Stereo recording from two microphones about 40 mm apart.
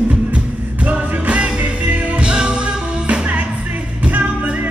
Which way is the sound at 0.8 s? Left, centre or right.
Right.